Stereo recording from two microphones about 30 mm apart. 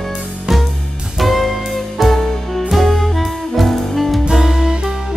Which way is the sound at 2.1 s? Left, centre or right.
Centre.